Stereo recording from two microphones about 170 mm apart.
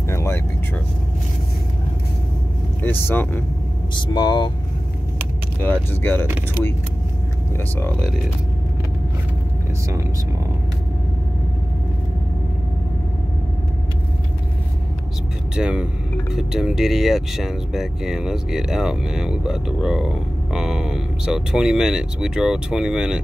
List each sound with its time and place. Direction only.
0.1 s music: 15° left (ahead or behind)
2.8 s speech: 15° left (ahead or behind)
4.1 s speech: 25° left (ahead or behind)
5.6 s speech: 10° left (ahead or behind)
6.2 s speech: 10° right (ahead or behind)
7.7 s speech: 10° left (ahead or behind)
15.5 s speech: 5° right (ahead or behind)